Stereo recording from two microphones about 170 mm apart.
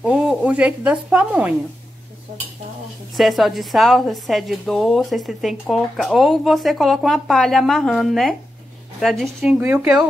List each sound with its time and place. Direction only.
0.0 s speech: 5° right (ahead or behind)
3.2 s a woman's voice: centre (ahead or behind)
9.4 s speech: 10° right (ahead or behind)